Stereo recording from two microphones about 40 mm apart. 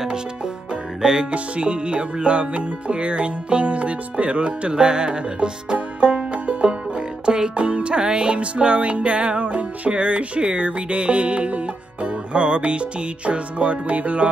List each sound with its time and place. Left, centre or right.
1.3 s music: right
5.9 s music: right
7.2 s music: right
7.5 s music: right